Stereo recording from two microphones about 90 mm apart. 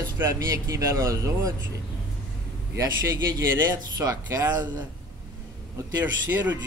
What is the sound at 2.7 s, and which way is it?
A man's voice, 25° right (ahead or behind).